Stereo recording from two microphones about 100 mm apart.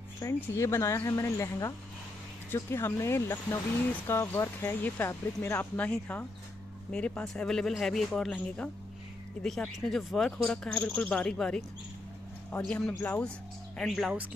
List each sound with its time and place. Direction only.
0.2 s speech: 30° left (ahead or behind); by 14.1 s centre (ahead or behind)